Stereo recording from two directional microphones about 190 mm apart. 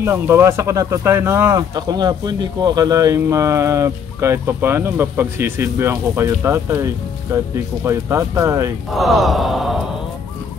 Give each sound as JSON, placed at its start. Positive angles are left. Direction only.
{"t": 0.0, "sound": "speech", "side_deg": -15}
{"t": 8.9, "sound": "sigh", "side_deg": 0}